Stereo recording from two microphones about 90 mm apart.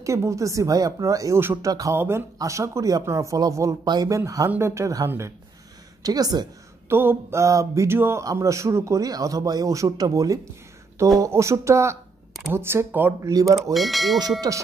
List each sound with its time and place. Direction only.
0.0 s speech: 35° right (ahead or behind)
2.0 s speech: 25° right (ahead or behind)
3.8 s a woman's voice: 50° right (ahead or behind)
4.1 s speech: 35° right (ahead or behind)
6.0 s a woman's voice: 45° right (ahead or behind)
6.9 s speech: 25° right (ahead or behind)
13.2 s speech: 40° right (ahead or behind)
13.7 s speech: centre (ahead or behind)
14.5 s a woman's voice: 45° right (ahead or behind)